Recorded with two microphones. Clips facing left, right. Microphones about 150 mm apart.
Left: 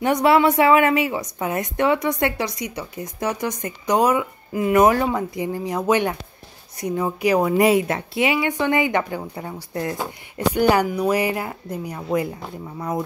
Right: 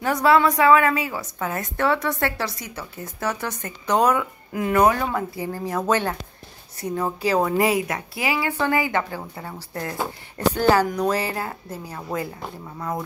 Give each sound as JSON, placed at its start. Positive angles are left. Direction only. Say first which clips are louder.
{"t": 0.0, "sound": "a woman's voice", "louder": "left 2 dB", "side_deg": 20}
{"t": 5.1, "sound": "a woman's voice", "louder": "left 3 dB", "side_deg": 20}